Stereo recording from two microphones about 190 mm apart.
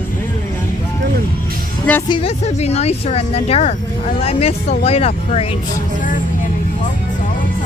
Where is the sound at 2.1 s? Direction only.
30° left (ahead or behind).